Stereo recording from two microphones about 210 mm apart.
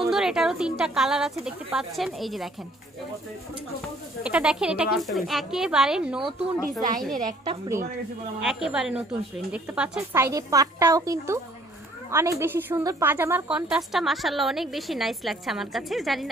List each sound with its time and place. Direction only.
0.0 s a woman's voice: centre (ahead or behind)
4.2 s a woman's voice: 5° right (ahead or behind)
7.4 s a woman's voice: 20° right (ahead or behind)
8.4 s a woman's voice: centre (ahead or behind)